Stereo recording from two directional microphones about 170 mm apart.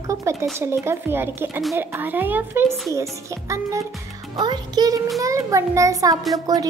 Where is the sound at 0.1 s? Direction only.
15° right (ahead or behind).